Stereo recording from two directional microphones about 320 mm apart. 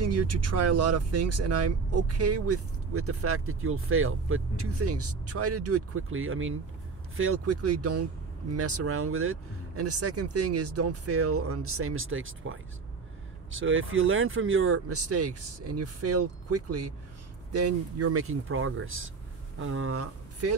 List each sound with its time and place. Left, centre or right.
0.0 s speech: right